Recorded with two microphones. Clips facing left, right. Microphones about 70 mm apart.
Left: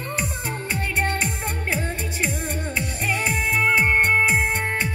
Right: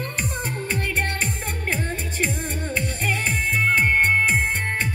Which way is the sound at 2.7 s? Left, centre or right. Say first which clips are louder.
Even; centre.